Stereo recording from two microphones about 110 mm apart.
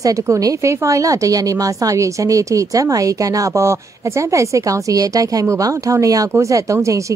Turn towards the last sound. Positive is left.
turn(degrees=-30)  # may be behind; listen again after turning